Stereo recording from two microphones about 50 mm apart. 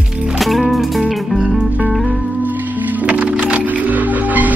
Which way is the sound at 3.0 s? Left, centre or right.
Right.